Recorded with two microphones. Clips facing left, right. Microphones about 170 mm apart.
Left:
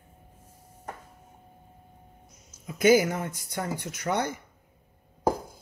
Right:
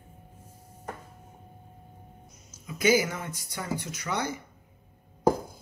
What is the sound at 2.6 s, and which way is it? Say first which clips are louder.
Speech: left 4 dB; 55° left (ahead or behind).